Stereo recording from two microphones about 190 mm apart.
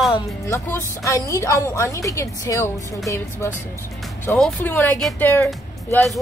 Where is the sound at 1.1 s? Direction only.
15° left (ahead or behind).